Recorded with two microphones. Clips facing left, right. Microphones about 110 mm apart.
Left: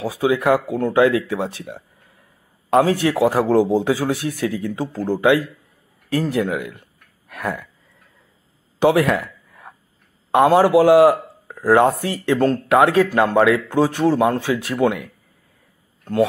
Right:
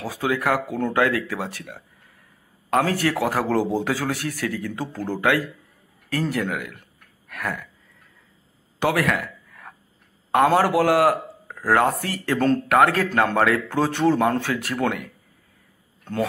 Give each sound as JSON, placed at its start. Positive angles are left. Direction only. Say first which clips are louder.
{"t": 0.0, "sound": "a man's voice", "louder": "left 5 dB", "side_deg": 15}
{"t": 0.7, "sound": "speech", "louder": "left 4 dB", "side_deg": 5}
{"t": 0.9, "sound": "a man's voice", "louder": "left 7 dB", "side_deg": 20}
{"t": 7.2, "sound": "a sound", "louder": "left 4 dB", "side_deg": 25}
{"t": 8.7, "sound": "a sound", "louder": "left 6 dB", "side_deg": 20}
{"t": 10.3, "sound": "a man's voice", "louder": "left 5 dB", "side_deg": 15}
{"t": 16.0, "sound": "speech", "louder": "left 7 dB", "side_deg": 5}